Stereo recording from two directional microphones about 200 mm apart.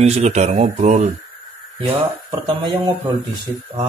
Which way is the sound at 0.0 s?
35° right (ahead or behind).